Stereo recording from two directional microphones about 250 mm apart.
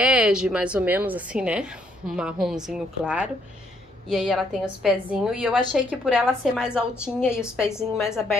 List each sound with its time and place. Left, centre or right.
0.0 s a woman's voice: centre
8.0 s a woman's voice: centre